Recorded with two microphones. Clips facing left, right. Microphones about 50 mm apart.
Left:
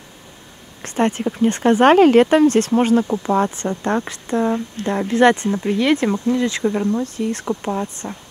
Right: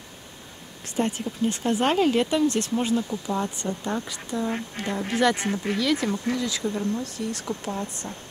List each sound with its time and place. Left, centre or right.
0.8 s speech: left